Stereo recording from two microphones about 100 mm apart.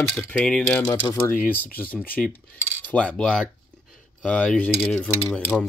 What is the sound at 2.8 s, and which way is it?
Cutlery, 10° left (ahead or behind).